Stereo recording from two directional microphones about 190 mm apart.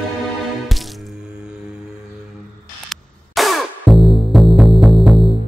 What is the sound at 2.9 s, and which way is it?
Music, centre (ahead or behind).